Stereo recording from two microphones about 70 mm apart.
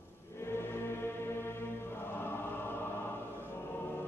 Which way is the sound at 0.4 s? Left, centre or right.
Left.